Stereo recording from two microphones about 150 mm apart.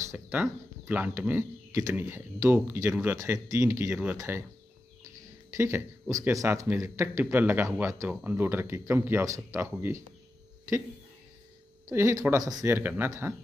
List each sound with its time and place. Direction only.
0.1 s speech: 10° right (ahead or behind)
5.5 s speech: 15° right (ahead or behind)
11.9 s speech: 20° right (ahead or behind)